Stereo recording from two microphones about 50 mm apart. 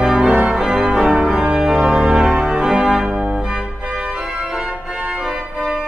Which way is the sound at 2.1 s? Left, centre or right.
Centre.